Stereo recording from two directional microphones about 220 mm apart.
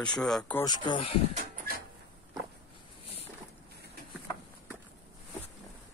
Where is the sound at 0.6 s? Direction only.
20° left (ahead or behind).